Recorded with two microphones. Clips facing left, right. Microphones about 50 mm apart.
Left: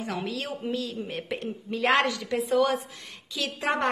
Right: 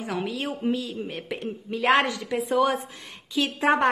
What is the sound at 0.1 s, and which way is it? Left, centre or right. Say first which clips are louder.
A woman's voice: right 5 dB; centre.